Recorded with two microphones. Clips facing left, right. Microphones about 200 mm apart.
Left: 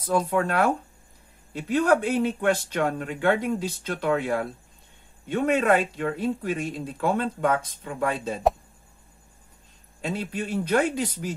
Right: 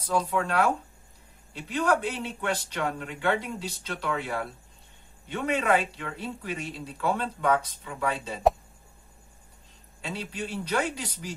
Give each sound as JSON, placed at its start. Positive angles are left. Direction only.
{"t": 0.1, "sound": "speech", "side_deg": 50}
{"t": 10.0, "sound": "speech", "side_deg": 50}